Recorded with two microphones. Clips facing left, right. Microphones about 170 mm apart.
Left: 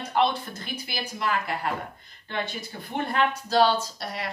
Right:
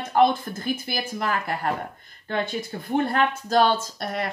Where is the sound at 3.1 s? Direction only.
50° right (ahead or behind).